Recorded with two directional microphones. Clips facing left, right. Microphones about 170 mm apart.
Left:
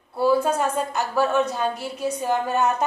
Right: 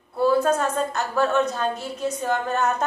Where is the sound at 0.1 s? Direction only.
10° left (ahead or behind).